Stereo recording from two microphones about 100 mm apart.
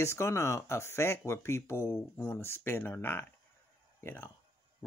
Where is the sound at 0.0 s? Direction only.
25° left (ahead or behind).